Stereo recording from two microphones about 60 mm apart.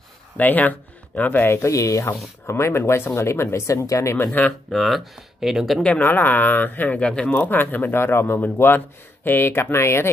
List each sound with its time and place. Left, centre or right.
0.4 s speech: left
1.5 s speech: left
2.4 s speech: left
4.2 s speech: left
4.6 s speech: centre
5.9 s a man's voice: left
7.0 s speech: centre
7.3 s a man's voice: left